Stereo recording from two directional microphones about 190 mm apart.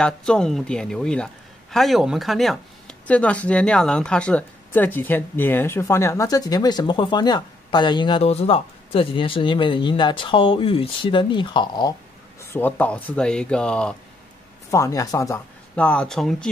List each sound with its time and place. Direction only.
0.0 s a man's voice: 5° left (ahead or behind); by 11.9 s 25° left (ahead or behind)
12.4 s speech: 10° left (ahead or behind)
14.7 s a man's voice: 15° left (ahead or behind)